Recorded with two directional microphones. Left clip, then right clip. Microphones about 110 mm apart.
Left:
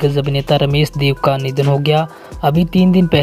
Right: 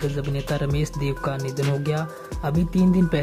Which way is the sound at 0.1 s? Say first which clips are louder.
Left 12 dB; 30° left (ahead or behind).